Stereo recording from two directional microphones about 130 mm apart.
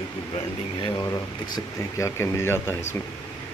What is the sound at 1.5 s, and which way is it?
Speech, 25° left (ahead or behind).